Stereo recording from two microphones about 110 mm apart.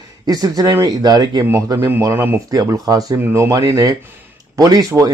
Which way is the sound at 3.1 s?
20° right (ahead or behind).